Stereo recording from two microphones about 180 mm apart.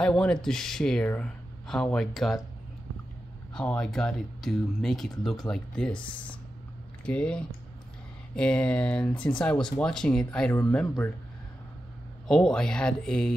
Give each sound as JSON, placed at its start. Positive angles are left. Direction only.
{"t": 0.0, "sound": "speech", "side_deg": 5}
{"t": 3.5, "sound": "speech", "side_deg": 5}
{"t": 7.1, "sound": "speech", "side_deg": 5}
{"t": 12.3, "sound": "speech", "side_deg": 5}